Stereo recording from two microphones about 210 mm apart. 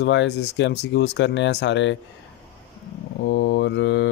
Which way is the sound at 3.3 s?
55° left (ahead or behind).